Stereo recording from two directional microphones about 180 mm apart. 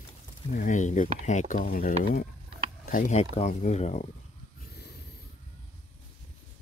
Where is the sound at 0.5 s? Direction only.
45° left (ahead or behind).